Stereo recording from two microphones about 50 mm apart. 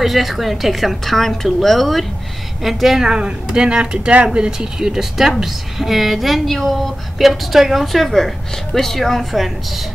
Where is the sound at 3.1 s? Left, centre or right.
Centre.